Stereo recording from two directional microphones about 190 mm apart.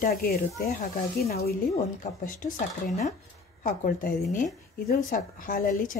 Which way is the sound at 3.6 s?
45° left (ahead or behind).